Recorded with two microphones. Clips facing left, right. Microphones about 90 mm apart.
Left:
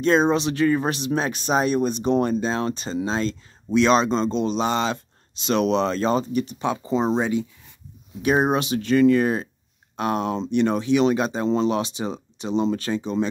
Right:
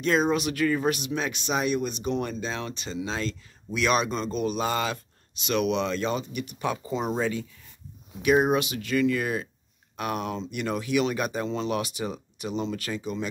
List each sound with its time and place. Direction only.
0.0 s speech: 30° left (ahead or behind)
8.2 s speech: 35° left (ahead or behind)